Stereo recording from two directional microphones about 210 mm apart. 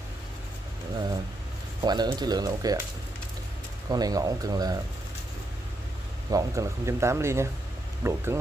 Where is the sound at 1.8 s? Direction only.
20° right (ahead or behind).